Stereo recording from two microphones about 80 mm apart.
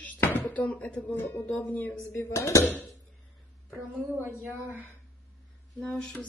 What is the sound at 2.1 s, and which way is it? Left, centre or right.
Speech, left.